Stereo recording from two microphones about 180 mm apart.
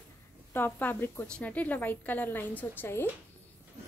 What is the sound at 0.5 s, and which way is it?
A woman's voice, 15° left (ahead or behind).